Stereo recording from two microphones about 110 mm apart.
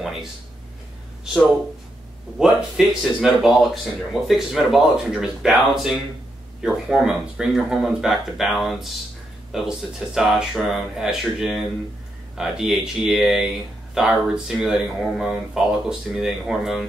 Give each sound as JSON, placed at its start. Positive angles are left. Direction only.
{"t": 2.3, "sound": "speech", "side_deg": 0}